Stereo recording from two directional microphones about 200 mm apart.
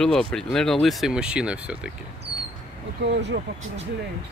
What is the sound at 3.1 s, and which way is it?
Speech, 60° right (ahead or behind).